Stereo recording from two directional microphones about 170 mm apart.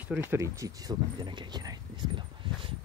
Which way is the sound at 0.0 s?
10° right (ahead or behind).